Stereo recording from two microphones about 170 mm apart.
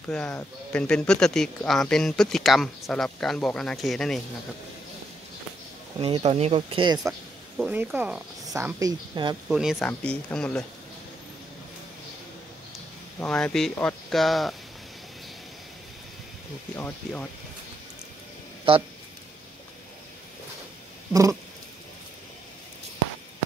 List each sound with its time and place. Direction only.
0.1 s speech: 5° left (ahead or behind)
5.9 s speech: 35° right (ahead or behind)
7.5 s speech: 10° right (ahead or behind); by 9.4 s 25° right (ahead or behind)
9.5 s speech: 5° right (ahead or behind)
13.2 s speech: 5° left (ahead or behind)
16.7 s speech: 10° left (ahead or behind)
21.1 s cat: 20° right (ahead or behind)